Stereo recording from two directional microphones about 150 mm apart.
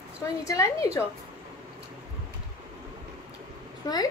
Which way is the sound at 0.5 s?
20° left (ahead or behind).